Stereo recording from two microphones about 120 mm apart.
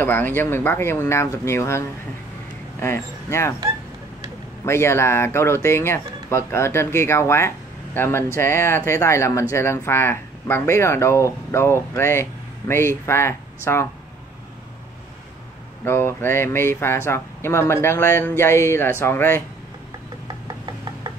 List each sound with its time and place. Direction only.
0.0 s speech: 15° left (ahead or behind)
4.6 s speech: 20° left (ahead or behind)
15.8 s speech: 20° left (ahead or behind)
20.2 s a sound: 35° right (ahead or behind)